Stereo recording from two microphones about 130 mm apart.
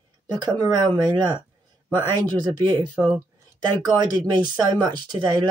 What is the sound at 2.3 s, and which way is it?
Speech, 35° right (ahead or behind).